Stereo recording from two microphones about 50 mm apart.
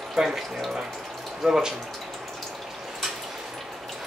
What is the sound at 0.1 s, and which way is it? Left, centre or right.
Speech, centre.